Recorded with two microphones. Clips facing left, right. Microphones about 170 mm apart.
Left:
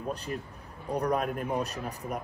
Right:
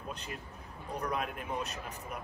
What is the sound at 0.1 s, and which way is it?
A man's voice, 35° left (ahead or behind).